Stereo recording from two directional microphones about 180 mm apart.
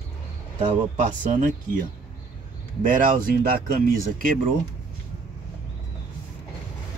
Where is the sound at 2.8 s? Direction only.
50° right (ahead or behind).